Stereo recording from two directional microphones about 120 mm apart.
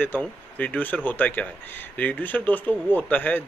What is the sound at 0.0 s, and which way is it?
Speech, 15° left (ahead or behind).